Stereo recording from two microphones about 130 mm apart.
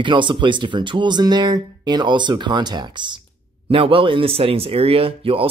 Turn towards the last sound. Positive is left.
turn(degrees=-45)  # may be behind; listen again after turning